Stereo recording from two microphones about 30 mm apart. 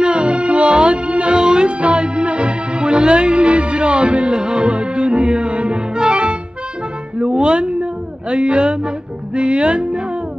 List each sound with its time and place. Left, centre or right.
0.0 s music: right
1.3 s music: right
7.2 s a sound: right